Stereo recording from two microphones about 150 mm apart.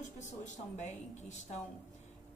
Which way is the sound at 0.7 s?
50° left (ahead or behind).